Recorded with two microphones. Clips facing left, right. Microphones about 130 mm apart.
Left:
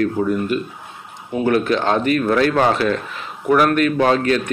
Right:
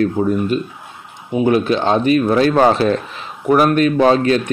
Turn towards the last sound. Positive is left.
turn(degrees=-25)  # may be behind; listen again after turning